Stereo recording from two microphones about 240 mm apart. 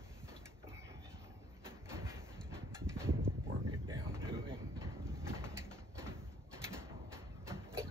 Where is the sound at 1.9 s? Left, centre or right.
Centre.